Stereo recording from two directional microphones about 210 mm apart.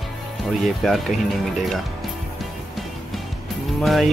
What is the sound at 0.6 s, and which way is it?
Speech, centre (ahead or behind).